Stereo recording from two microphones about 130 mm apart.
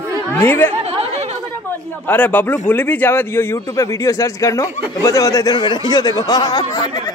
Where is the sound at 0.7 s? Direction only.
55° right (ahead or behind).